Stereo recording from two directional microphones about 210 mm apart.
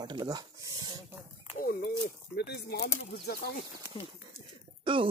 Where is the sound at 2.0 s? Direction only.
50° left (ahead or behind).